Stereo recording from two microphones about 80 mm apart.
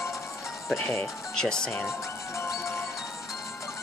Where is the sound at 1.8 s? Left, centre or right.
Left.